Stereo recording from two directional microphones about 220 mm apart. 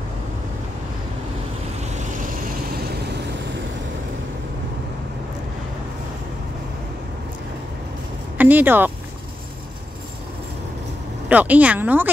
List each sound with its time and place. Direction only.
1.8 s vehicle: 35° right (ahead or behind)
8.4 s speech: 10° right (ahead or behind)
11.2 s speech: 5° right (ahead or behind)